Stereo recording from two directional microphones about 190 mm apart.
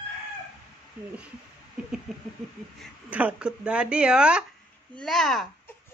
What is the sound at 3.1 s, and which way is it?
Speech, 5° right (ahead or behind).